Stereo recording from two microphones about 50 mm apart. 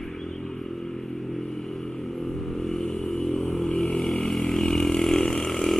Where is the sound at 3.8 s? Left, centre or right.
Centre.